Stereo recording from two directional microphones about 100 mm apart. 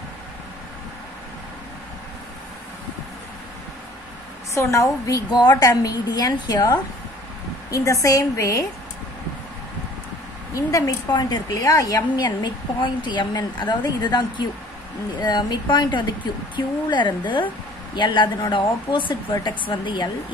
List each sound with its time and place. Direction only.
4.6 s a woman's voice: 30° left (ahead or behind)
10.5 s a woman's voice: 35° left (ahead or behind); by 20.1 s 50° left (ahead or behind)